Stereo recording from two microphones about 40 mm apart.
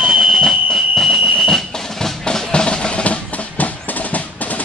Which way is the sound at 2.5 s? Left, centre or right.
Left.